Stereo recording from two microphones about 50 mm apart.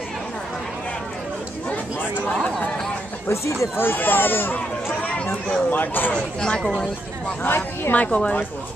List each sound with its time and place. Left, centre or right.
3.7 s speech: left
6.1 s a woman's voice: centre
7.4 s speech: left
7.9 s a woman's voice: left